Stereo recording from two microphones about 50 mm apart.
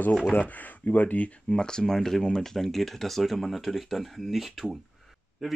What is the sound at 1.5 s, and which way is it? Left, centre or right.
Speech, centre.